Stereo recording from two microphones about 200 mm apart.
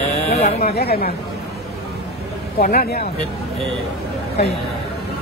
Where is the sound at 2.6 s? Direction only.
45° left (ahead or behind).